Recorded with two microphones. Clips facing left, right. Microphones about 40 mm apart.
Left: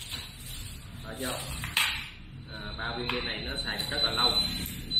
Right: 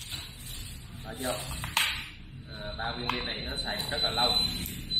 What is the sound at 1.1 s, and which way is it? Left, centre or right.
Speech, left.